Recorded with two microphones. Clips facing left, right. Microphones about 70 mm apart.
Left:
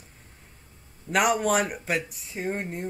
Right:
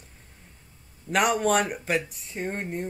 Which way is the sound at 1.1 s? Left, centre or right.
Centre.